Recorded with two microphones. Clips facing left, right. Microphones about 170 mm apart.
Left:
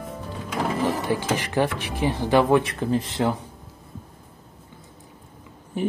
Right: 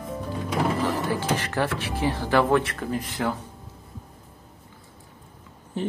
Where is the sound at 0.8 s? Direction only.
15° left (ahead or behind).